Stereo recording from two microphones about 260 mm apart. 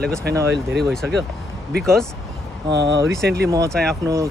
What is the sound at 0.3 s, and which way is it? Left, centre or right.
Speech, right.